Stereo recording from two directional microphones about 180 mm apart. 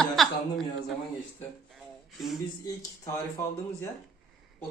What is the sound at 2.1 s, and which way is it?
Speech, centre (ahead or behind).